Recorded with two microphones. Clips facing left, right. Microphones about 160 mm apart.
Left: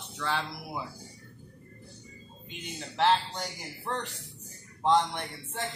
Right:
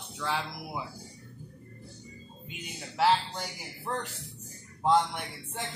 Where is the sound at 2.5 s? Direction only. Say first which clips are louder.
Left 2 dB; 5° right (ahead or behind).